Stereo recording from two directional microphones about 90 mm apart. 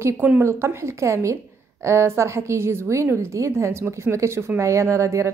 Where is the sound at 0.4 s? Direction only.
30° right (ahead or behind).